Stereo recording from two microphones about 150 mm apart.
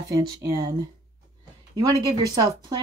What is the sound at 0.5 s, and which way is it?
Speech, 25° right (ahead or behind).